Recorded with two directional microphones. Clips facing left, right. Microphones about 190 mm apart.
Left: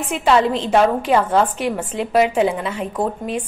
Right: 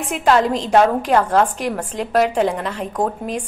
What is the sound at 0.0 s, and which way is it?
A woman's voice, centre (ahead or behind).